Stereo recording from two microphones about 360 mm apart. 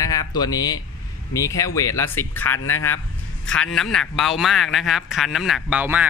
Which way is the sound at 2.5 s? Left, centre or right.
Left.